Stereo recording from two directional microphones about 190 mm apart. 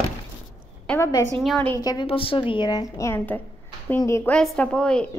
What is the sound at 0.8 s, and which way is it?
Speech, 15° left (ahead or behind).